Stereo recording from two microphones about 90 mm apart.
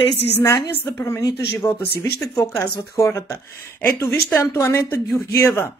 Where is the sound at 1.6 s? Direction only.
40° left (ahead or behind).